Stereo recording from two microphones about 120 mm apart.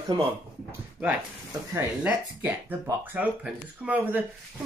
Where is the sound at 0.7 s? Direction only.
15° right (ahead or behind).